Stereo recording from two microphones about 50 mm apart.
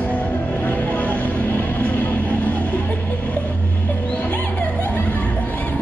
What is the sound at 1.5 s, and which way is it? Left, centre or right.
Music, left.